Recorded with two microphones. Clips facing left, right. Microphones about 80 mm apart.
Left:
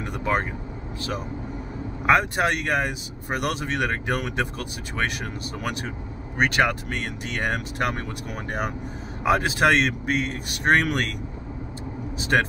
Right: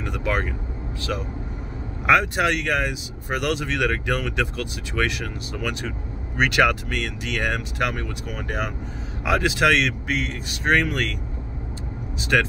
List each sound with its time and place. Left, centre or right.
0.0 s speech: left
2.0 s speech: left
6.5 s speech: left
9.2 s speech: left
12.2 s speech: left